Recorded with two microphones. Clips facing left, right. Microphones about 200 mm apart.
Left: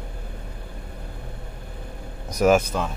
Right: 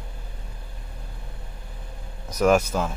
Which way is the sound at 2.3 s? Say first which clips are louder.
Left 1 dB; 5° left (ahead or behind).